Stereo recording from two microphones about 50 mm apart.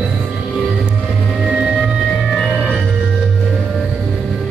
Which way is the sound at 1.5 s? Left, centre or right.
Centre.